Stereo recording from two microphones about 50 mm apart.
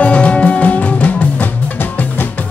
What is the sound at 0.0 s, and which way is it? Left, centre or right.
Music, left.